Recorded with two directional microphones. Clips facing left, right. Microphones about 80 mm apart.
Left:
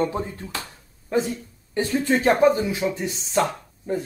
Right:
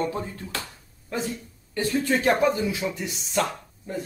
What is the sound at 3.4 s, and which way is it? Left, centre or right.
Speech, left.